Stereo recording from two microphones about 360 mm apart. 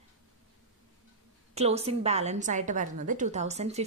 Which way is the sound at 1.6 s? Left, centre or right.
Centre.